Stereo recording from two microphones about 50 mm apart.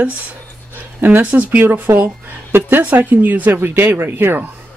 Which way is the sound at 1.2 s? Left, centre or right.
Right.